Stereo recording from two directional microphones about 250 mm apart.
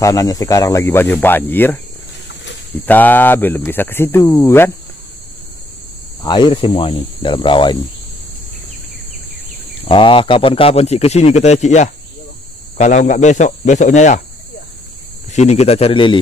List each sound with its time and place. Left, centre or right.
0.0 s speech: centre
2.8 s speech: centre
6.2 s speech: centre
9.8 s speech: left
15.3 s speech: left